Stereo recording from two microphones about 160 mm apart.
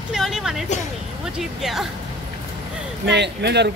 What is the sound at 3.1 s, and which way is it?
Speech, 90° right.